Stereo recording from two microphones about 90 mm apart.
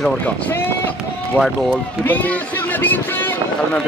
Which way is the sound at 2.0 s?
20° left (ahead or behind).